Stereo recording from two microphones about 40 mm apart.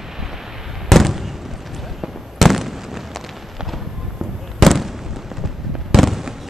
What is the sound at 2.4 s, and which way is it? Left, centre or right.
Fireworks, centre.